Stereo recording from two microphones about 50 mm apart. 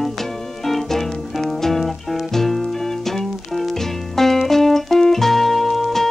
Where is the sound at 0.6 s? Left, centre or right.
Centre.